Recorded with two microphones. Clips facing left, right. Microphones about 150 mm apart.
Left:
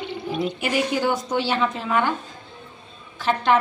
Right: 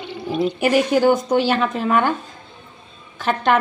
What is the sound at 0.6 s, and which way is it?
A woman's voice, 50° right (ahead or behind).